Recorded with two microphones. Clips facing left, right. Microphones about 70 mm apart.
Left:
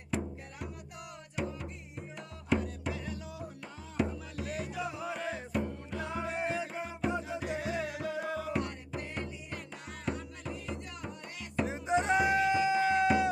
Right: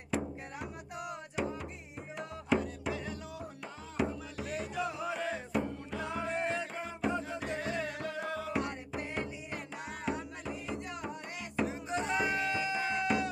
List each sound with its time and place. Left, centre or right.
1.4 s music: centre
10.0 s music: centre
10.5 s music: centre
11.6 s music: left